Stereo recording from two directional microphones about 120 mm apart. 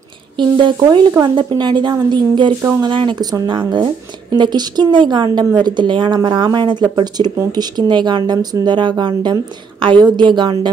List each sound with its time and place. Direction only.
0.4 s speech: 40° right (ahead or behind)